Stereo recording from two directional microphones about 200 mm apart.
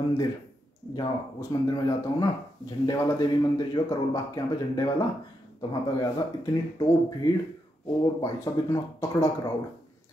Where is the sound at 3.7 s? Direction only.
20° left (ahead or behind).